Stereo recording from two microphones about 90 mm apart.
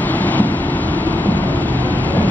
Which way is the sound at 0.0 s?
20° left (ahead or behind).